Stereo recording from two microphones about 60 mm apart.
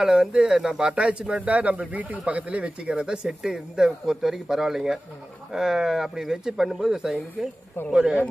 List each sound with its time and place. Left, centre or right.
0.0 s speech: centre